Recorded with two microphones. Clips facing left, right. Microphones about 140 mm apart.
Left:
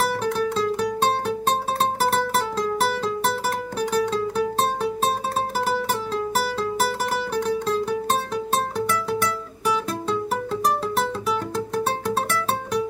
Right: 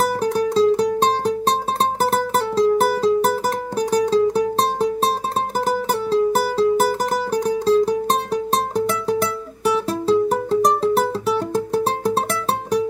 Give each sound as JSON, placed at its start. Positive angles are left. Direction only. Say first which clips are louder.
{"t": 0.2, "sound": "music", "louder": "right 6 dB", "side_deg": -35}
{"t": 6.3, "sound": "music", "louder": "right 7 dB", "side_deg": -35}
{"t": 10.0, "sound": "music", "louder": "right 8 dB", "side_deg": -35}